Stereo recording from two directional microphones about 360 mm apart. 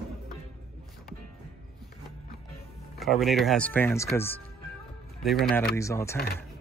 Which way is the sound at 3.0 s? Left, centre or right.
Centre.